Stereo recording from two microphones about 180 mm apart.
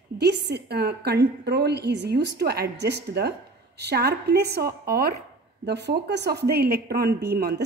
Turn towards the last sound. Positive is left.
turn(degrees=-60)  # may be behind; listen again after turning